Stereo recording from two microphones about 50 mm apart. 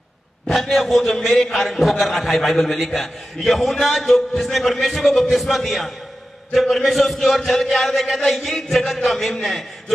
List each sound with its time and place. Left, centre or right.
0.5 s a man's voice: centre